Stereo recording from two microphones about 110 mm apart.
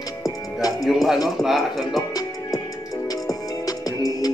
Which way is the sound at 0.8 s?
Centre (ahead or behind).